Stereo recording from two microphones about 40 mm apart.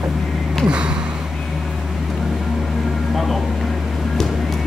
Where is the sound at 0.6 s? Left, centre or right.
Right.